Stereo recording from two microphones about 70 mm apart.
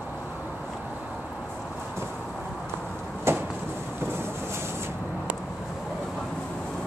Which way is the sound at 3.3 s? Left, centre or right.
Right.